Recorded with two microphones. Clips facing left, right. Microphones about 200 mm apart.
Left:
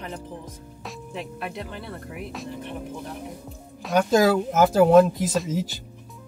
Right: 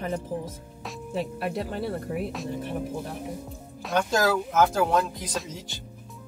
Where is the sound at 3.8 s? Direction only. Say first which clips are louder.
Left 5 dB; 5° left (ahead or behind).